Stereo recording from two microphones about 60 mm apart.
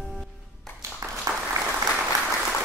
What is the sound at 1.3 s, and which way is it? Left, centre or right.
Applause, right.